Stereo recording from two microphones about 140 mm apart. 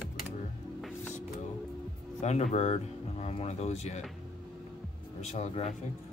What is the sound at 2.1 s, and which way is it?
Speech, 55° left (ahead or behind).